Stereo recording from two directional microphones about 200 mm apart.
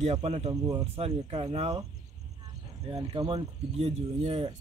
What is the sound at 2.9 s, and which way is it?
Speech, 25° right (ahead or behind).